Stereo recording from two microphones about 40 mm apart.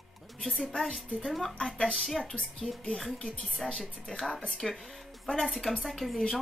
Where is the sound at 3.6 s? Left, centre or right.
Centre.